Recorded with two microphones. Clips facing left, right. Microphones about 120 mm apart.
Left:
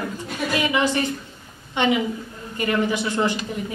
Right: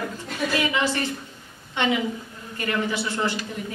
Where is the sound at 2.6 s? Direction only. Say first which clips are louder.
Left 4 dB; 15° left (ahead or behind).